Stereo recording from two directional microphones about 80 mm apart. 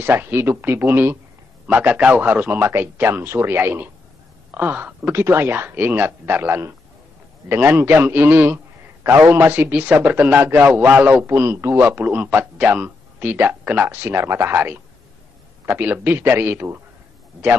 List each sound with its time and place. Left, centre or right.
0.0 s a man's voice: right
5.1 s a man's voice: right
11.8 s a man's voice: right